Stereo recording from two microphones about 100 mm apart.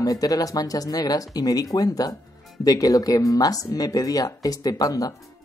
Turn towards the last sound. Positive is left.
turn(degrees=35)  # may be behind; listen again after turning